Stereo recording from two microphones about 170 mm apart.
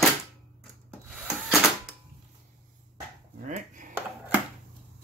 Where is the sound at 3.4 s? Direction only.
50° right (ahead or behind).